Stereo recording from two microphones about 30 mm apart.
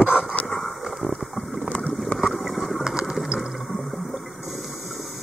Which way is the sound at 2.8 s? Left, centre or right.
Right.